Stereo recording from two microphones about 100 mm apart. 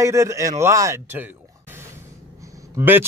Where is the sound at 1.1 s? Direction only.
20° right (ahead or behind).